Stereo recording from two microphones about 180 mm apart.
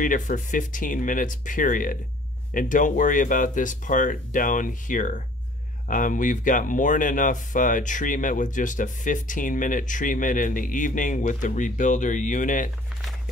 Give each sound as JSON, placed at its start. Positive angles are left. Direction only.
{"t": 0.0, "sound": "speech", "side_deg": 45}